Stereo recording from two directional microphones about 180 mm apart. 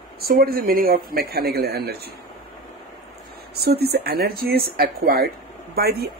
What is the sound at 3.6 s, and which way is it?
Speech, 60° right (ahead or behind).